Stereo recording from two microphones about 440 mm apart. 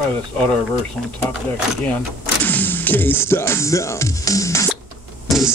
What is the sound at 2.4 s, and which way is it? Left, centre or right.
Speech, centre.